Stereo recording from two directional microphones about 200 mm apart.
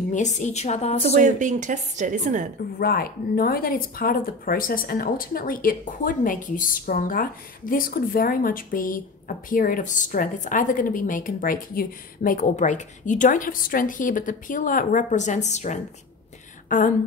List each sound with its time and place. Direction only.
0.1 s a woman's voice: 35° left (ahead or behind)
1.2 s a woman's voice: 40° right (ahead or behind)
2.8 s a woman's voice: 50° left (ahead or behind)